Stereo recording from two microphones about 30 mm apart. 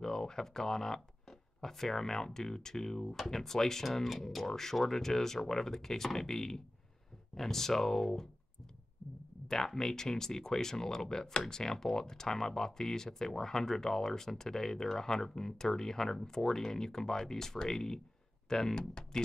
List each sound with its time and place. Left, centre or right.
0.0 s speech: centre
4.5 s speech: centre
9.5 s speech: centre